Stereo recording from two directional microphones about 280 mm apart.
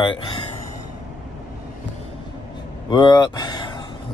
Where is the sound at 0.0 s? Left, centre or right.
Centre.